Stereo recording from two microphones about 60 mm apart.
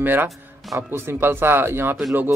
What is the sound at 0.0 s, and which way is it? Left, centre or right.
Speech, right.